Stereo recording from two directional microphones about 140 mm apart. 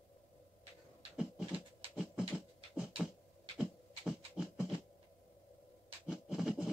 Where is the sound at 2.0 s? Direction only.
5° right (ahead or behind).